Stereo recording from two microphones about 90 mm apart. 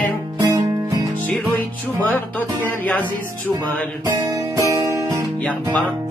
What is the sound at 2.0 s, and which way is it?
Music, 20° left (ahead or behind).